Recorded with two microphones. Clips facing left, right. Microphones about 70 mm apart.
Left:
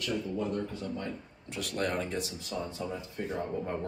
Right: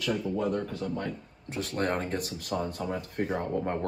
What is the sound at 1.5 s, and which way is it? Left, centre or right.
Speech, right.